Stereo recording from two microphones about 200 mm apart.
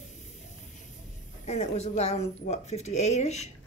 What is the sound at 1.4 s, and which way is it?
Speech, 35° left (ahead or behind).